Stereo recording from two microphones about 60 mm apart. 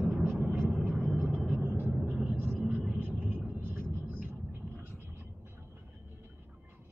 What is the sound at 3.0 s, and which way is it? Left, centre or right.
Vehicle, right.